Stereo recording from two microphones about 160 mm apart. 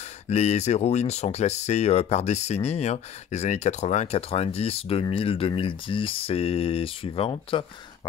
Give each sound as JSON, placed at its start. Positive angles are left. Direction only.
{"t": 0.3, "sound": "speech", "side_deg": 45}